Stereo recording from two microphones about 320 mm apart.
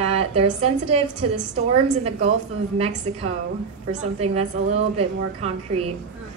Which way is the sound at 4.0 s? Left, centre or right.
Centre.